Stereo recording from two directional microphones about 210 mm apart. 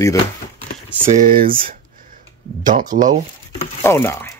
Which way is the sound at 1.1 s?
40° right (ahead or behind).